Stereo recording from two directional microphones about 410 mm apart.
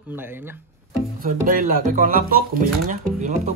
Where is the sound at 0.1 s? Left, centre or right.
Centre.